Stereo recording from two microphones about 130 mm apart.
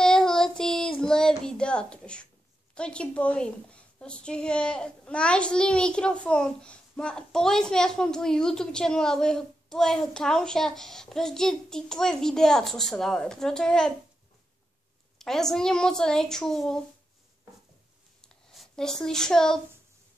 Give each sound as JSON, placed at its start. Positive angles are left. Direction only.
{"t": 0.0, "sound": "child singing", "side_deg": 5}
{"t": 2.7, "sound": "a woman's voice", "side_deg": 10}
{"t": 15.1, "sound": "a woman's voice", "side_deg": 5}
{"t": 18.2, "sound": "a sound", "side_deg": 0}